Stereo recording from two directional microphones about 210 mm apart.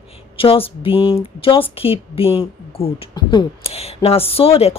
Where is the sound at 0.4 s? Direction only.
25° left (ahead or behind).